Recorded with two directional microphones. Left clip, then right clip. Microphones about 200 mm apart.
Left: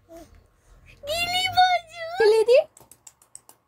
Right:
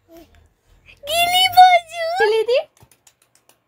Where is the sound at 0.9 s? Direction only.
40° right (ahead or behind).